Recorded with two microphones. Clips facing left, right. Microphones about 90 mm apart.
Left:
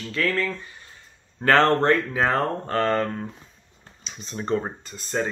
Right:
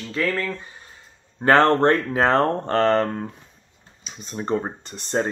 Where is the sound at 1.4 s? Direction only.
20° right (ahead or behind).